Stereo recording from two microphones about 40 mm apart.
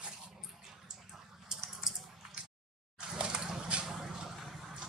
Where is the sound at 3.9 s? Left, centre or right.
Centre.